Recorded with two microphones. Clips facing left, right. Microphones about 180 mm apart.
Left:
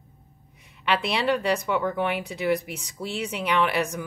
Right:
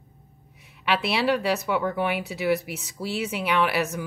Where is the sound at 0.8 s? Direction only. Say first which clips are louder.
Right 1 dB; 5° right (ahead or behind).